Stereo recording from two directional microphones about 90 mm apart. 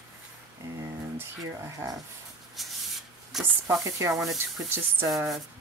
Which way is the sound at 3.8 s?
40° right (ahead or behind).